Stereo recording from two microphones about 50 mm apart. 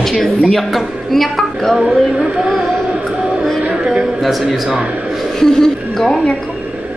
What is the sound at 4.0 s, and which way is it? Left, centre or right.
Speech, centre.